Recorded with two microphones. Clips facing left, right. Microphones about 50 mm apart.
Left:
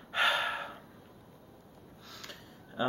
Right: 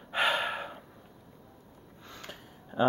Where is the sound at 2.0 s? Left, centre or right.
Right.